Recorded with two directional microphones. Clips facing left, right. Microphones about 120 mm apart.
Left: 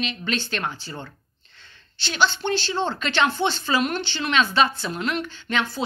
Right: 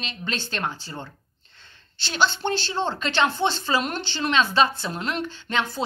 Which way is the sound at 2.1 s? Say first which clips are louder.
Left 1 dB; 45° right (ahead or behind).